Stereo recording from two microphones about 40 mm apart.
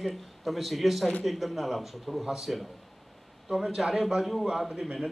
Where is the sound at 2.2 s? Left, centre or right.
Centre.